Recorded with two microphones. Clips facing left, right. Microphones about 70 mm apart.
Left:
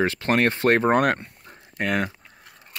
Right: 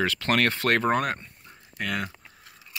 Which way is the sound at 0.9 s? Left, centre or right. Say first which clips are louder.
Left 6 dB; left.